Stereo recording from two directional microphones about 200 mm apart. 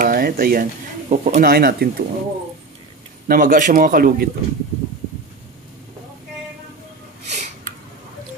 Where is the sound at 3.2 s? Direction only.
45° right (ahead or behind).